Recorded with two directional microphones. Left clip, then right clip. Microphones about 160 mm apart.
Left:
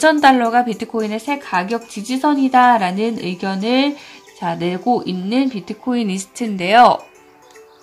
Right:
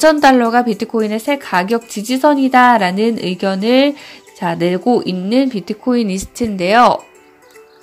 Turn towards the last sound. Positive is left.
turn(degrees=-20)  # may be behind; listen again after turning